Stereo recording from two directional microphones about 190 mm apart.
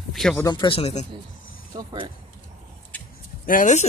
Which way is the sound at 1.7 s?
20° right (ahead or behind).